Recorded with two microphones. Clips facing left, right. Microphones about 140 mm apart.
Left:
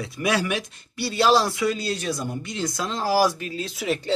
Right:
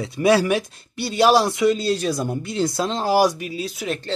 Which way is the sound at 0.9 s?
20° right (ahead or behind).